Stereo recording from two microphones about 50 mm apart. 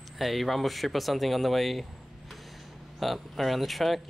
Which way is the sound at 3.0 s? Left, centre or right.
Centre.